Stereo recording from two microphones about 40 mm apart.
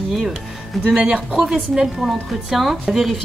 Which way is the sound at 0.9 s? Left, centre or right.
Centre.